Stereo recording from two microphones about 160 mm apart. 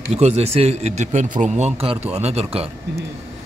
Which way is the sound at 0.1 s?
40° right (ahead or behind).